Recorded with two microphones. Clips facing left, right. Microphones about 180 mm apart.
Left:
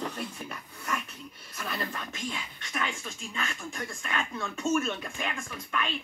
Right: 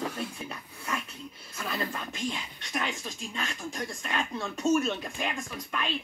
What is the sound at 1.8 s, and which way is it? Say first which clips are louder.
Speech: right 4 dB; 10° right (ahead or behind).